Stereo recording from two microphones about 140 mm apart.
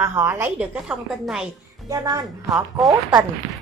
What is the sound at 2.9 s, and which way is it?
Speech, 25° right (ahead or behind).